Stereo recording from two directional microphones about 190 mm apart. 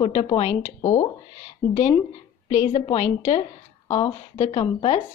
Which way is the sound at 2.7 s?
30° left (ahead or behind).